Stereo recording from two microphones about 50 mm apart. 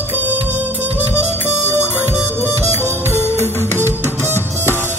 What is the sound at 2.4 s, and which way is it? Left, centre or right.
Music, right.